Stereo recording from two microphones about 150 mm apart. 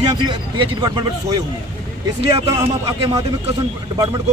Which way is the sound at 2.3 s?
25° right (ahead or behind).